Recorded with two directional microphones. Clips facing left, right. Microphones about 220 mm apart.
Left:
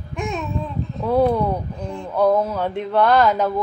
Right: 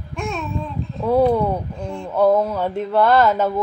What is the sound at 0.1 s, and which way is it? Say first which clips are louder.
Babbling: even; 15° left (ahead or behind).